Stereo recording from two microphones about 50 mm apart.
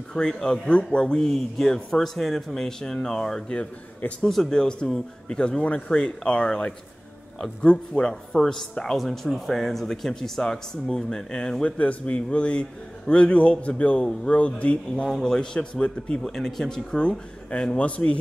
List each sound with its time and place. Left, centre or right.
0.1 s a man's voice: centre
11.8 s a man's voice: left
15.0 s a man's voice: centre
15.3 s a man's voice: left